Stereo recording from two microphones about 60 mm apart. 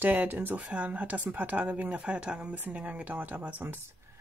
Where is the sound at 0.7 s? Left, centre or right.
Right.